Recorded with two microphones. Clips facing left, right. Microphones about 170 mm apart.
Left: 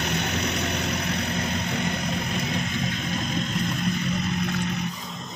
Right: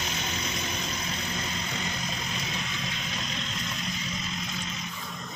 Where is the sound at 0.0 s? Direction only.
65° left (ahead or behind).